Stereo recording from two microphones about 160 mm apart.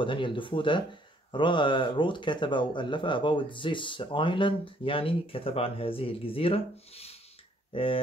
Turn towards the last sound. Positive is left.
turn(degrees=35)  # may be behind; listen again after turning